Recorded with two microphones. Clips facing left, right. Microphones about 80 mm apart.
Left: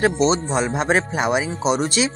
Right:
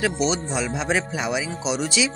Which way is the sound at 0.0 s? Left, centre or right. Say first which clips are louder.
Left 5 dB; left.